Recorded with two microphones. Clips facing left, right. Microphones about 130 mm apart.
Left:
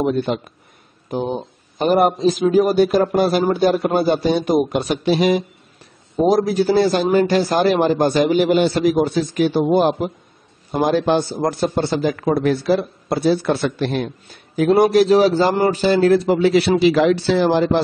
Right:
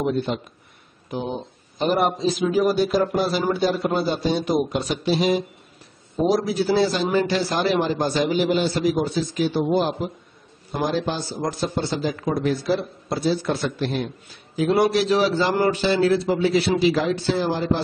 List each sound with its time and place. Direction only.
0.0 s a man's voice: 60° left (ahead or behind)
1.1 s a man's voice: 40° left (ahead or behind); by 5.4 s 65° left (ahead or behind)
6.2 s a man's voice: 50° left (ahead or behind); by 17.8 s 80° left